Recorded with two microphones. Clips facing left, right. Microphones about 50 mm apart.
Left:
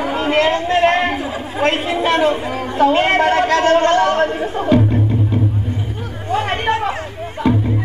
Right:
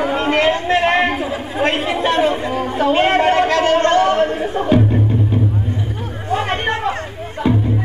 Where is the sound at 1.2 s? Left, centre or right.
Centre.